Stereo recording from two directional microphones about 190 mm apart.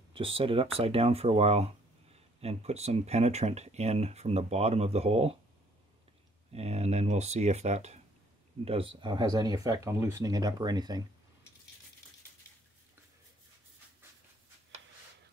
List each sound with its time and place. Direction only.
0.1 s speech: 30° right (ahead or behind)
6.5 s speech: 35° right (ahead or behind)